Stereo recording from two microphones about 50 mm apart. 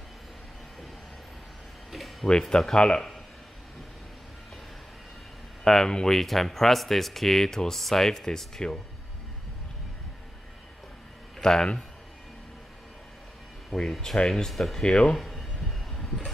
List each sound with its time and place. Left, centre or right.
1.9 s a sound: centre
2.5 s speech: centre
5.6 s speech: centre
11.3 s speech: centre
13.7 s speech: centre
15.1 s a sound: centre
15.9 s train: centre